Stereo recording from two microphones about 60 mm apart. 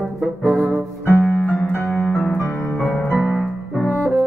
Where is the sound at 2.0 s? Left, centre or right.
Centre.